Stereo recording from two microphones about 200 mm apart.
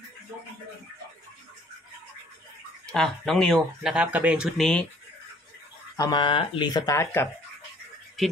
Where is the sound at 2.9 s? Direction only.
5° left (ahead or behind).